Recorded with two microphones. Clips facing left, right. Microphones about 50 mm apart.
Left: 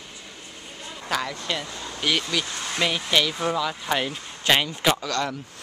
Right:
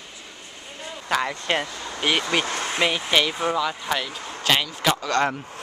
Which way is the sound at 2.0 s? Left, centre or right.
Right.